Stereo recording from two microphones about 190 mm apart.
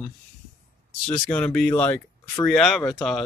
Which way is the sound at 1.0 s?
5° left (ahead or behind).